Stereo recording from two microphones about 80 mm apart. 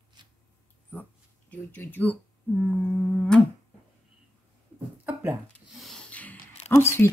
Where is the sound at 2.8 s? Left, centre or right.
Centre.